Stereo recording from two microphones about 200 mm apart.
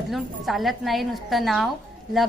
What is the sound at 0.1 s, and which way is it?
A woman's voice, centre (ahead or behind).